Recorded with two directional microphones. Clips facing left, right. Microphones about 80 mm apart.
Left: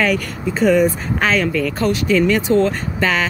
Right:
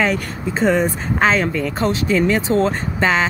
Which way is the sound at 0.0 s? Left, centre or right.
Right.